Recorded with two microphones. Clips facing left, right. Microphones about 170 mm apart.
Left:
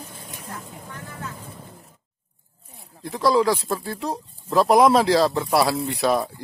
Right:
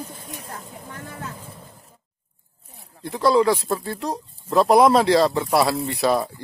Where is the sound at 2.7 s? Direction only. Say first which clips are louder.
Right 1 dB; centre (ahead or behind).